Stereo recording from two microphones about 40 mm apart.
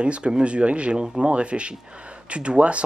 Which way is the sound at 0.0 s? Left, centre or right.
Right.